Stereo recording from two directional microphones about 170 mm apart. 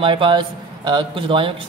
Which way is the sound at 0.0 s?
30° right (ahead or behind).